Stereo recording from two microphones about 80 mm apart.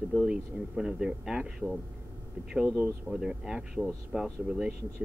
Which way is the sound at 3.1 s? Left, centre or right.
Centre.